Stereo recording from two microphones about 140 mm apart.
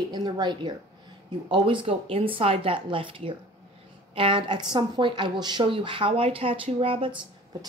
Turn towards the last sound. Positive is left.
turn(degrees=-40)  # may be behind; listen again after turning